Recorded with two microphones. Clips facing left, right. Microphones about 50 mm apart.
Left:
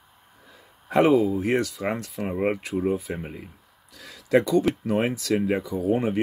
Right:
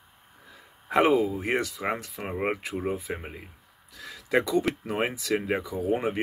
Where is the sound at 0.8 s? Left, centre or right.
Centre.